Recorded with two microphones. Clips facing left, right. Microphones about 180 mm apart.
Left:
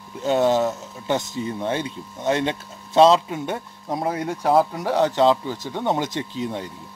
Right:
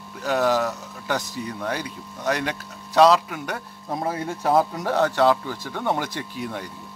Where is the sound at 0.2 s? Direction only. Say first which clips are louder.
Left 3 dB; 25° left (ahead or behind).